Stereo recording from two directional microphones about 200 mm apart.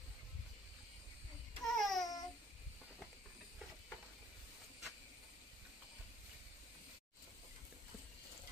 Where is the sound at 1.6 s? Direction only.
Centre (ahead or behind).